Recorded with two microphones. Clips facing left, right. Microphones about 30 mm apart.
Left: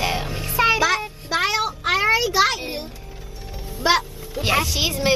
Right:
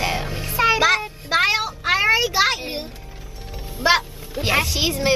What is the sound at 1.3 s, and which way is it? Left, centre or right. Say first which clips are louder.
Child singing: right 3 dB; right.